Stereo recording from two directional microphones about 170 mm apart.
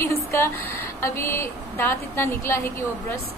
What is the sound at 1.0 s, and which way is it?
A woman's voice, 15° left (ahead or behind).